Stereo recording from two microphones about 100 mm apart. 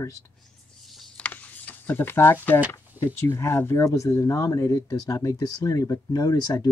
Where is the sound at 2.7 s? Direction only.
25° left (ahead or behind); by 6.6 s 40° left (ahead or behind).